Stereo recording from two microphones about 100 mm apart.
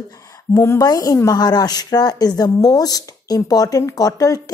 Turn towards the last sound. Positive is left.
turn(degrees=35)  # may be behind; listen again after turning